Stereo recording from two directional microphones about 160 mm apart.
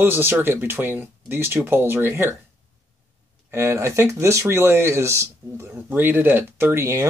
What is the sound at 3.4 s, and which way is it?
Speech, 15° right (ahead or behind).